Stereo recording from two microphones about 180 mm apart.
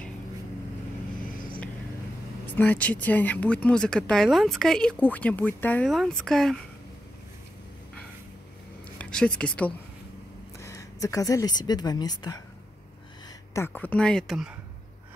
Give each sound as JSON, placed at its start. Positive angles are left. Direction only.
{"t": 2.4, "sound": "speech", "side_deg": 10}
{"t": 8.9, "sound": "speech", "side_deg": 5}
{"t": 10.6, "sound": "a woman's voice", "side_deg": 15}
{"t": 13.5, "sound": "speech", "side_deg": 10}